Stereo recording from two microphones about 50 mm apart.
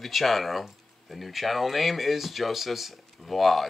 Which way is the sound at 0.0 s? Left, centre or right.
Centre.